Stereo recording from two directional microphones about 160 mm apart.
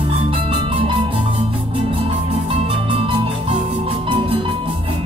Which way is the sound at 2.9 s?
35° right (ahead or behind).